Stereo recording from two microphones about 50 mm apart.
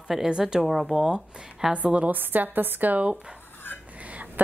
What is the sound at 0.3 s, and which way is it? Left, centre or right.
Speech, centre.